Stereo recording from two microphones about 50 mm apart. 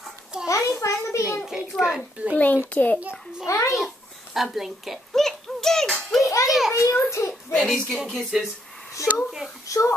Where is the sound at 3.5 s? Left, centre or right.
Left.